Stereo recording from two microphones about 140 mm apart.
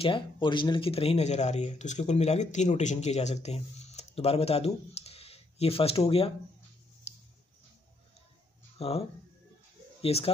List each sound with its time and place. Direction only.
0.0 s speech: 35° left (ahead or behind)
7.1 s a sound: 50° left (ahead or behind)
8.7 s speech: 45° left (ahead or behind)
10.0 s speech: 45° left (ahead or behind)